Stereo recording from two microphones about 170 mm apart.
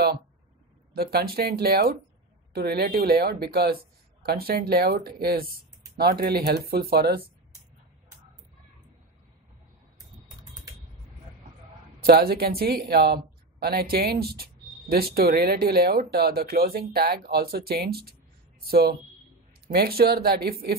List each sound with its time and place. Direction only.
0.9 s speech: 65° right (ahead or behind)
12.0 s speech: 60° right (ahead or behind)